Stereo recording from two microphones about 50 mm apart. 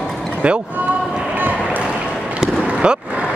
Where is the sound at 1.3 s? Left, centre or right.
Right.